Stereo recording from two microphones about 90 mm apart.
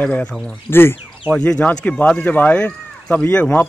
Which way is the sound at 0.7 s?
25° left (ahead or behind).